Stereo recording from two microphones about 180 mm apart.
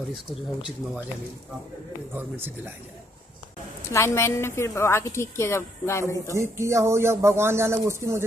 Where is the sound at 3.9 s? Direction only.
15° left (ahead or behind).